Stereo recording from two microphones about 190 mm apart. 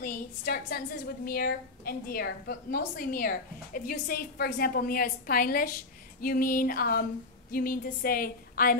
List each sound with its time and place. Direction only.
0.0 s a woman's voice: 50° left (ahead or behind)